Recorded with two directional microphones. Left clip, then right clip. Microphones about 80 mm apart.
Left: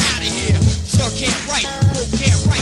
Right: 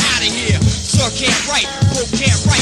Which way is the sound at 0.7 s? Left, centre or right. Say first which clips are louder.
Right 4 dB; right.